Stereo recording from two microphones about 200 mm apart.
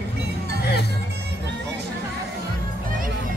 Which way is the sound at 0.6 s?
55° left (ahead or behind).